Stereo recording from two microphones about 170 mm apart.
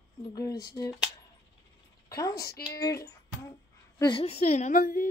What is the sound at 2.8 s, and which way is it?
Music, 20° left (ahead or behind).